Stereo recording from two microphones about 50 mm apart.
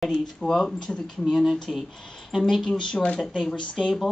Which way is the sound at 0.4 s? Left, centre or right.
Centre.